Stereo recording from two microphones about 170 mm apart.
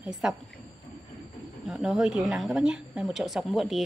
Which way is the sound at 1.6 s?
Centre (ahead or behind).